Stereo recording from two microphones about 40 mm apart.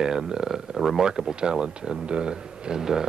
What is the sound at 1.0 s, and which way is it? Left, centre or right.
Speech, centre.